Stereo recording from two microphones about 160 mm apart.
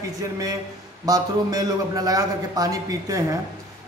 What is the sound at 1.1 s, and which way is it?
A man's voice, 25° right (ahead or behind).